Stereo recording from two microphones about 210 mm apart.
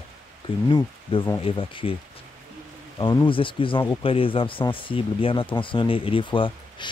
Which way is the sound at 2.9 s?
20° left (ahead or behind).